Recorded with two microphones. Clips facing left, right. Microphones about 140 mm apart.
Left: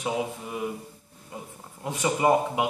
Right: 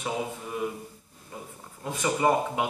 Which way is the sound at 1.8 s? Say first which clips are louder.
Left 1 dB; 20° left (ahead or behind).